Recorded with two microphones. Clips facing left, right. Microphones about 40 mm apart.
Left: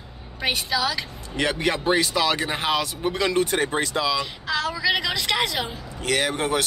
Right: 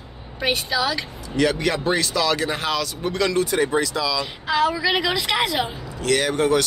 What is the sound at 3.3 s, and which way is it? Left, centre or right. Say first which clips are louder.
Speech: right 2 dB; left.